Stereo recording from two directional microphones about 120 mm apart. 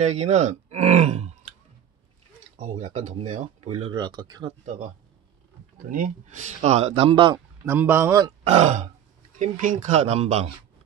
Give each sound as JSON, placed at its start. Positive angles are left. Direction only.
{"t": 0.0, "sound": "speech", "side_deg": -65}
{"t": 2.9, "sound": "speech", "side_deg": -75}
{"t": 3.9, "sound": "speech", "side_deg": -40}
{"t": 4.5, "sound": "speech", "side_deg": -70}
{"t": 6.3, "sound": "speech", "side_deg": -75}
{"t": 7.6, "sound": "speech", "side_deg": -20}
{"t": 8.5, "sound": "speech", "side_deg": -65}
{"t": 9.4, "sound": "speech", "side_deg": -90}